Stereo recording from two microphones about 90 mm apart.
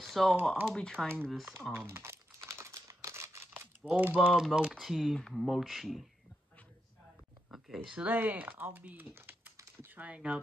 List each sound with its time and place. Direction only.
0.0 s a sound: centre (ahead or behind)
0.7 s speech: 10° left (ahead or behind)
1.3 s speech: centre (ahead or behind)
1.7 s crumpling: 25° right (ahead or behind)
4.3 s speech: 5° right (ahead or behind)
7.5 s speech: 5° right (ahead or behind)
8.1 s speech: 20° right (ahead or behind)